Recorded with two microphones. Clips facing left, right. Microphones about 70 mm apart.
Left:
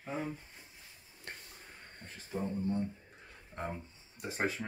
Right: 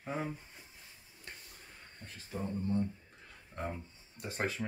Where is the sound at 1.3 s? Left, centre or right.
Left.